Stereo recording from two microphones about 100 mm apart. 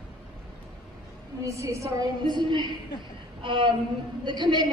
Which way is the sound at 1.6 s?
30° right (ahead or behind).